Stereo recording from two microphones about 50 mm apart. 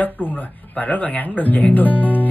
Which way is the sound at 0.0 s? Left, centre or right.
Left.